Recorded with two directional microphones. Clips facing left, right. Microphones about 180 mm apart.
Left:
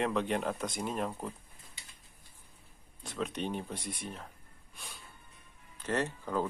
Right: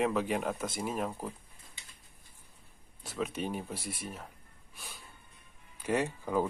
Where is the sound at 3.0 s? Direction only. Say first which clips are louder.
Right 1 dB; 5° right (ahead or behind).